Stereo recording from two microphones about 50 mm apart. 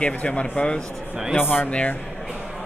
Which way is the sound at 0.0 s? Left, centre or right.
Left.